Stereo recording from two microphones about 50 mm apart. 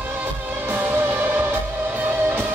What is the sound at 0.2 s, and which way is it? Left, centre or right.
Music, right.